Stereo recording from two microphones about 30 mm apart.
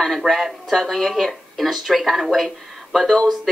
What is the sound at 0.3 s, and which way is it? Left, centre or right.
A woman's voice, centre.